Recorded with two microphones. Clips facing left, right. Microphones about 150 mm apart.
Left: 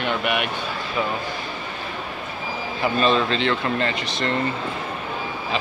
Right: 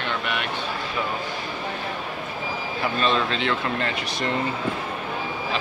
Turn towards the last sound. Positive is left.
turn(degrees=-10)  # may be behind; listen again after turning